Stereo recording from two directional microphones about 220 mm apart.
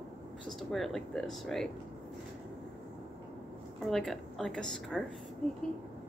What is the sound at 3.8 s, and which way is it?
A woman's voice, centre (ahead or behind).